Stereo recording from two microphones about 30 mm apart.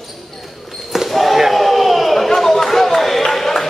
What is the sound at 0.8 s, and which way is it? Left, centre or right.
Basketball bounce, centre.